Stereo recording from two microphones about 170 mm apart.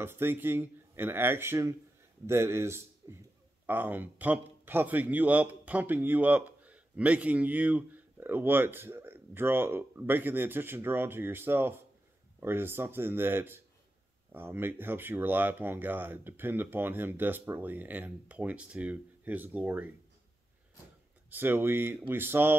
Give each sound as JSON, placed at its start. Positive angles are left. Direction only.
{"t": 0.0, "sound": "a man's voice", "side_deg": -15}
{"t": 21.3, "sound": "a man's voice", "side_deg": -10}